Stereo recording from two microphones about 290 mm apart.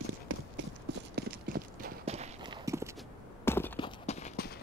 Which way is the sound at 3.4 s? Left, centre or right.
Centre.